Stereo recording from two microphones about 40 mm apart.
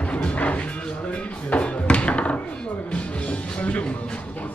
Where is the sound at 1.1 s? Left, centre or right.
Left.